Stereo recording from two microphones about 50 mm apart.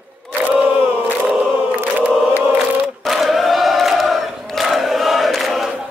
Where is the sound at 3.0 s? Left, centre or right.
Centre.